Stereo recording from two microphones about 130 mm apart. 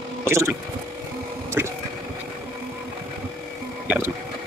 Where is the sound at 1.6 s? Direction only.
15° right (ahead or behind).